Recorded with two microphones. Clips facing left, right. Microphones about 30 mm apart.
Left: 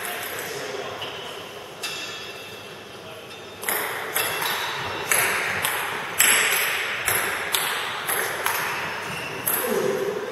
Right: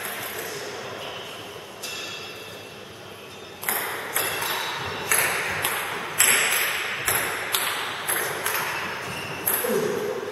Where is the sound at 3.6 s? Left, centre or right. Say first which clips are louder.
Left 2 dB; centre.